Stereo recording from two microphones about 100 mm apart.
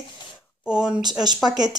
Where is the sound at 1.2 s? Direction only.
45° right (ahead or behind).